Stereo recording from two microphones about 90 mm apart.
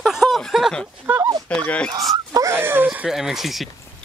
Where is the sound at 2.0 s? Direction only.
40° right (ahead or behind).